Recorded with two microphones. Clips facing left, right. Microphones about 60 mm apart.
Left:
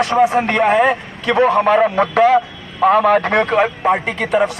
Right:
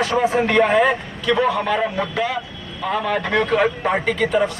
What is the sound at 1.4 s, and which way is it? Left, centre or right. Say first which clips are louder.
A man's voice: left 7 dB; left.